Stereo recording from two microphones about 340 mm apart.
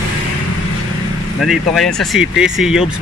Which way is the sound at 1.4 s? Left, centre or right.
Centre.